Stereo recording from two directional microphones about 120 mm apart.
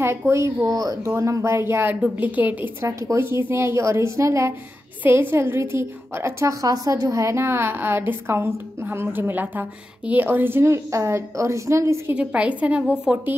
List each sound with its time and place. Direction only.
0.0 s a woman's voice: 20° right (ahead or behind)
12.1 s a woman's voice: 10° right (ahead or behind)